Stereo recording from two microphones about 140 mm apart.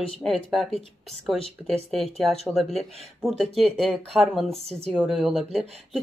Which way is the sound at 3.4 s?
Centre (ahead or behind).